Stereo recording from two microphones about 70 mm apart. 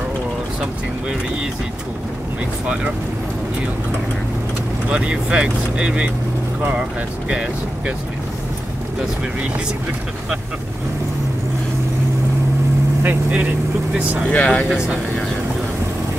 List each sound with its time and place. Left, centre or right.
4.9 s speech: centre
13.0 s speech: right
14.3 s speech: centre